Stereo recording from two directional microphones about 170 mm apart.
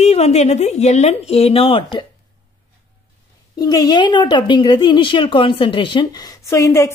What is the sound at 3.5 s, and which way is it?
A woman's voice, 20° left (ahead or behind).